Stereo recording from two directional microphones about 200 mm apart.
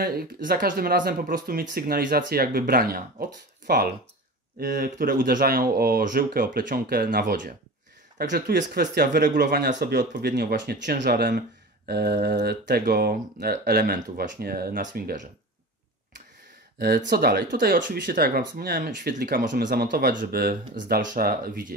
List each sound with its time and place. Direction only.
0.0 s speech: 50° right (ahead or behind)
16.8 s speech: 50° right (ahead or behind)
17.7 s speech: 45° right (ahead or behind)
18.7 s speech: 45° right (ahead or behind)